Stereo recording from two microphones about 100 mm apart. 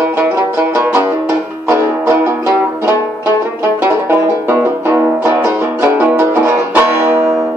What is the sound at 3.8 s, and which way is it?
Music, 15° right (ahead or behind).